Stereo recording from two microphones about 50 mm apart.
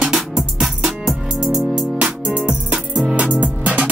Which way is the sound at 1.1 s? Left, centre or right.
Right.